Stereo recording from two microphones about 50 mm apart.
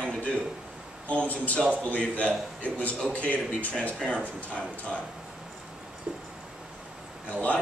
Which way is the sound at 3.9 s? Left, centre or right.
Centre.